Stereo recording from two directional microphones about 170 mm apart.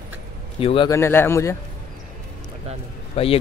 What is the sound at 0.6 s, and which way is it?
Speech, 35° left (ahead or behind).